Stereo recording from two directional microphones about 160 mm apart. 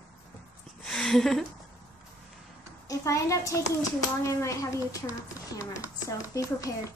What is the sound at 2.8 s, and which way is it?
A child's voice, 20° left (ahead or behind).